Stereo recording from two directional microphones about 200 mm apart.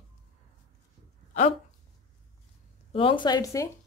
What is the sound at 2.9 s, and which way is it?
Speech, 25° left (ahead or behind).